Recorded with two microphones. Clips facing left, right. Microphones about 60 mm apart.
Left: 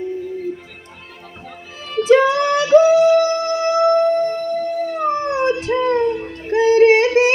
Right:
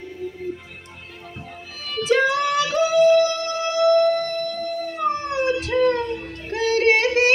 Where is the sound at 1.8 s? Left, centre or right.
Left.